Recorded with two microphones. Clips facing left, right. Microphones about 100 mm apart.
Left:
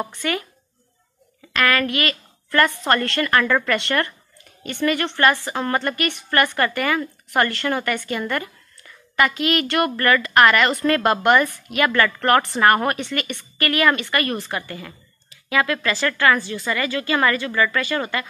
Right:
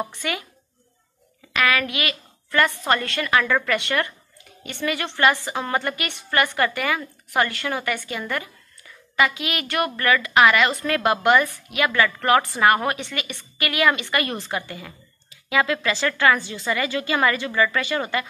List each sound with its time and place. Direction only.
0.1 s a woman's voice: 15° right (ahead or behind)
1.5 s a woman's voice: 10° right (ahead or behind)